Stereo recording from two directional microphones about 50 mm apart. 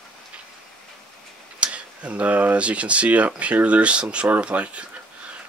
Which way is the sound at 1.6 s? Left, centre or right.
Right.